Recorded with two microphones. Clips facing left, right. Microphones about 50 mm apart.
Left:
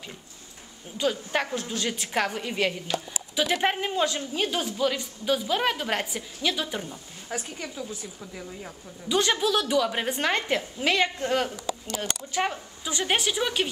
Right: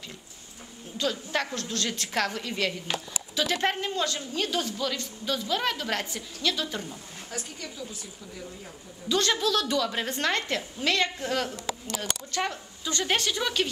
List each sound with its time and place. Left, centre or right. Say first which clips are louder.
0.9 s a woman's voice: left 2 dB; centre
9.1 s a woman's voice: left 2 dB; centre